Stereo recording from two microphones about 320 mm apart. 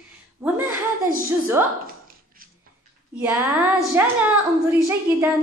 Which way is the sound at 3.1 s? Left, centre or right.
Centre.